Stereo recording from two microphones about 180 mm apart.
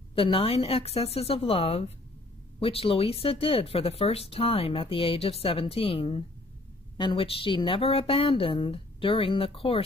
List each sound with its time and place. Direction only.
0.1 s speech: 30° left (ahead or behind)